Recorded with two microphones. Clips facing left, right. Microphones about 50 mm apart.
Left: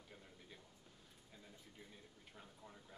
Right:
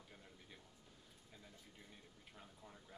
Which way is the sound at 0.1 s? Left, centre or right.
Centre.